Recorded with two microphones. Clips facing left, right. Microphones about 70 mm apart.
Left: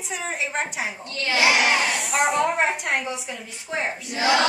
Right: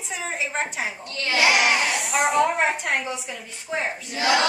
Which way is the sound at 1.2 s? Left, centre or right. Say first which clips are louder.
Even; left.